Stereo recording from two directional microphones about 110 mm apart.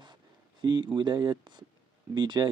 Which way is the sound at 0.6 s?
40° right (ahead or behind).